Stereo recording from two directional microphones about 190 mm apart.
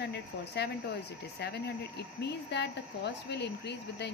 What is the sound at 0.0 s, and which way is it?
Speech, 60° left (ahead or behind).